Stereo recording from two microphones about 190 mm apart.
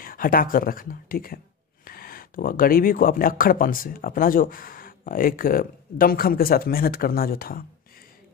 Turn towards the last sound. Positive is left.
turn(degrees=50)  # may be behind; listen again after turning